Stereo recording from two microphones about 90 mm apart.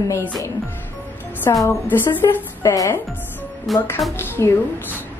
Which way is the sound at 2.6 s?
40° left (ahead or behind).